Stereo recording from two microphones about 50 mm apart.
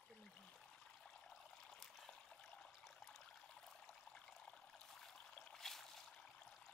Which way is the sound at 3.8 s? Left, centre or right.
Centre.